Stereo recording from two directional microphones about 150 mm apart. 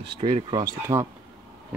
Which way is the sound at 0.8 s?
20° right (ahead or behind).